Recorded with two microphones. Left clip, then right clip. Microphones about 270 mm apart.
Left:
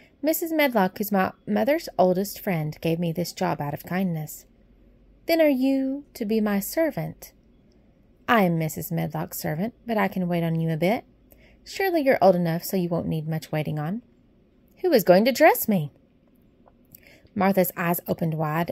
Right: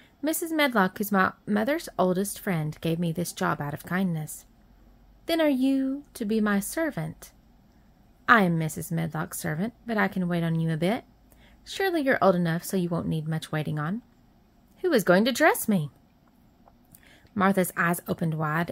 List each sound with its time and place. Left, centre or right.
0.0 s a woman's voice: centre
17.0 s a woman's voice: centre